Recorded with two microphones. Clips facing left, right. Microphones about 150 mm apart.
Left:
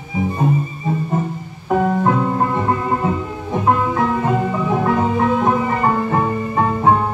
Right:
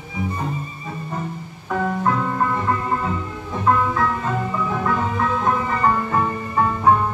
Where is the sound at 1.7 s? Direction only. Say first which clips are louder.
Left 5 dB; 30° left (ahead or behind).